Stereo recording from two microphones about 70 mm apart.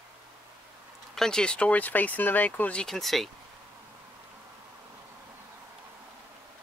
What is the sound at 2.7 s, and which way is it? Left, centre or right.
Speech, centre.